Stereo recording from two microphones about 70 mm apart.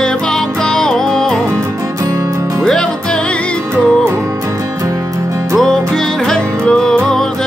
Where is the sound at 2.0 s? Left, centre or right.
Right.